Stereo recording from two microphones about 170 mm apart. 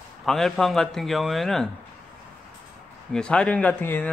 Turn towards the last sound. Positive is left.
turn(degrees=10)  # may be behind; listen again after turning